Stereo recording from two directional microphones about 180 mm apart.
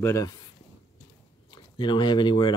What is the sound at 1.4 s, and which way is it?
Speech, 25° left (ahead or behind).